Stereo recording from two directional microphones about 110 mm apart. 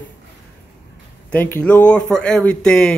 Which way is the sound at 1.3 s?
15° left (ahead or behind).